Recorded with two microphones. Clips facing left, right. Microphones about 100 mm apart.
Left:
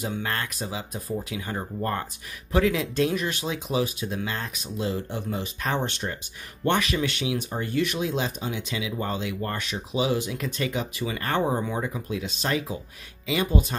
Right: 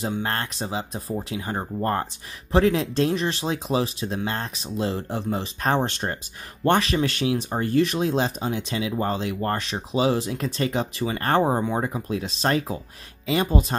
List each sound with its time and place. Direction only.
0.0 s speech: 35° right (ahead or behind)